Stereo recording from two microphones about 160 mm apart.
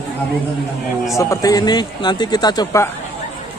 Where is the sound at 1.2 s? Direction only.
20° left (ahead or behind).